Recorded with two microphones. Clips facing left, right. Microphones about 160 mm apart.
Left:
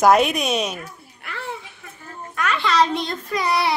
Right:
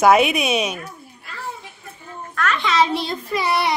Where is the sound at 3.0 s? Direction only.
5° right (ahead or behind).